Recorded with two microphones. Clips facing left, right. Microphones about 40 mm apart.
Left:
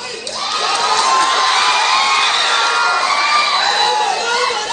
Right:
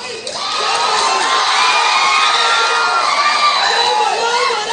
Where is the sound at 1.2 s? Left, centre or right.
Right.